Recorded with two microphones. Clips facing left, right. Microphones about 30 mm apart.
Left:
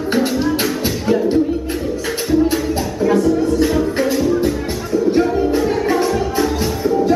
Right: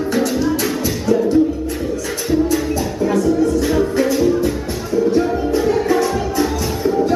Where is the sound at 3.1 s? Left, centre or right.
Left.